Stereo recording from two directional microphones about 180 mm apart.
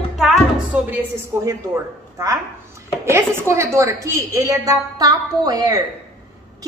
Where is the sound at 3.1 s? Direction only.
15° right (ahead or behind).